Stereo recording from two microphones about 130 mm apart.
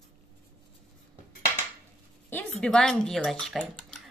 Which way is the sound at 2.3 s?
5° left (ahead or behind).